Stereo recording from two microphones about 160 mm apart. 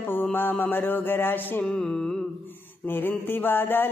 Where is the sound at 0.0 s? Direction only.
10° left (ahead or behind).